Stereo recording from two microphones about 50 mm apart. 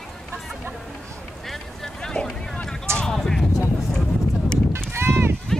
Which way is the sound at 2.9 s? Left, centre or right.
Centre.